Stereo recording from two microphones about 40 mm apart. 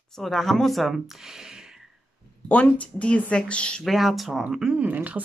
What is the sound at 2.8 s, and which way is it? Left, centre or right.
Speech, left.